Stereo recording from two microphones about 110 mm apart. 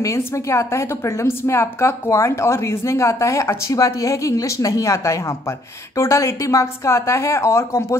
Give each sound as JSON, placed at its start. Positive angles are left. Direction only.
{"t": 0.0, "sound": "a woman's voice", "side_deg": 25}